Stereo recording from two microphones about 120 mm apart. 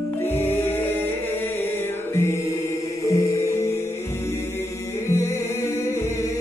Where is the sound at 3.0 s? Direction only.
25° left (ahead or behind).